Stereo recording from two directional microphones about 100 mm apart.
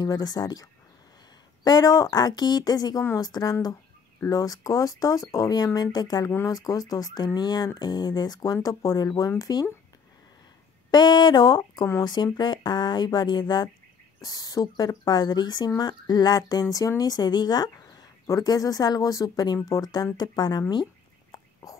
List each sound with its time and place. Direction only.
0.0 s speech: 40° left (ahead or behind)
10.9 s speech: 45° left (ahead or behind)
14.2 s speech: 40° left (ahead or behind)
21.3 s whispering: 40° left (ahead or behind)